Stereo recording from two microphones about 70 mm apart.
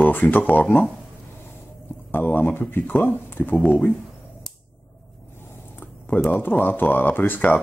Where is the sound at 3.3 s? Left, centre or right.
Left.